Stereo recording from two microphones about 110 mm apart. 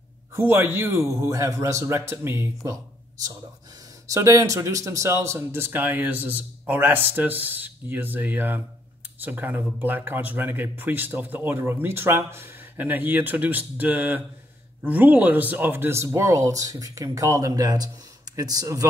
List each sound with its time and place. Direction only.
0.4 s speech: 20° right (ahead or behind)